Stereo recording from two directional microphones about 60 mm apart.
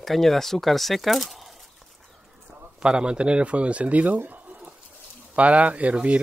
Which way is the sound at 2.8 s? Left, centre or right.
Centre.